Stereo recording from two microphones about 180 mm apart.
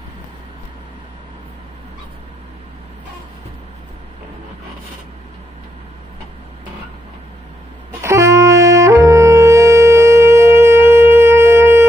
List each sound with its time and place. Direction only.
8.0 s saxophone: 15° right (ahead or behind)